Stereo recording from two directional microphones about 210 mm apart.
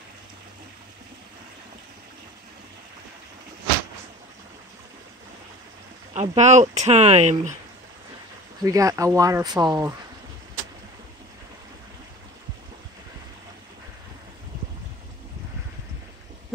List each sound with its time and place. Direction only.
6.1 s speech: 30° right (ahead or behind)
8.6 s speech: 15° right (ahead or behind)